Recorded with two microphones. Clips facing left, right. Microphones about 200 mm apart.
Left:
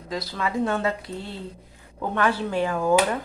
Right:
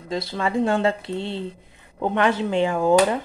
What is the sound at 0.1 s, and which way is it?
Speech, 25° right (ahead or behind).